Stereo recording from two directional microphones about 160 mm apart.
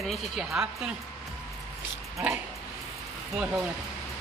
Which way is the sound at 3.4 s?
5° right (ahead or behind).